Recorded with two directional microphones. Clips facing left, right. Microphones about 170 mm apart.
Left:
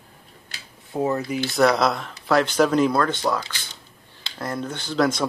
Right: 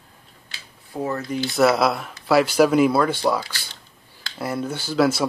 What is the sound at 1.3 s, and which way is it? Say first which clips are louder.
Speech: right 2 dB; centre (ahead or behind).